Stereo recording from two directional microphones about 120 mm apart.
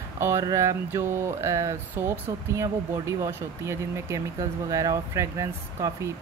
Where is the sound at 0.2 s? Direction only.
25° right (ahead or behind).